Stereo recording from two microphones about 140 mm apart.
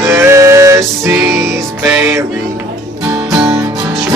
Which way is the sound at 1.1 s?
5° right (ahead or behind).